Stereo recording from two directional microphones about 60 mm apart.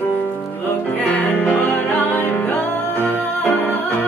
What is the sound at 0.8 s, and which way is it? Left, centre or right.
Music, left.